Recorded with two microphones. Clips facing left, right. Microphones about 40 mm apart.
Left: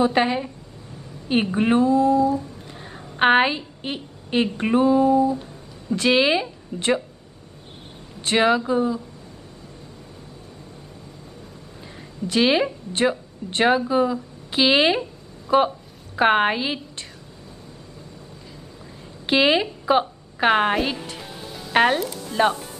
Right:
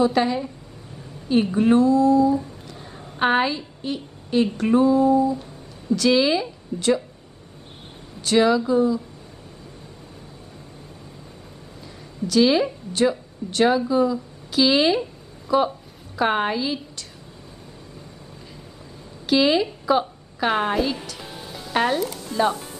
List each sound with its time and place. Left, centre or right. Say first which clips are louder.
0.0 s a woman's voice: even; left
8.2 s speech: right 1 dB; left
12.3 s speech: right 1 dB; left
19.2 s a woman's voice: even; left
22.5 s music: even; centre